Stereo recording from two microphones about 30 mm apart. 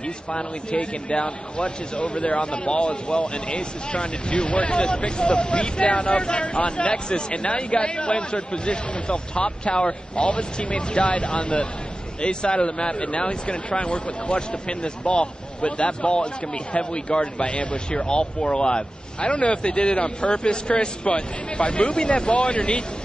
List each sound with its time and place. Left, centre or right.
0.3 s speech: left
0.7 s speech: left
7.1 s speech: left
17.9 s speech: left